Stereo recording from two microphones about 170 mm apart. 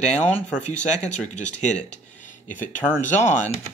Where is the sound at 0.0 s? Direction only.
40° left (ahead or behind).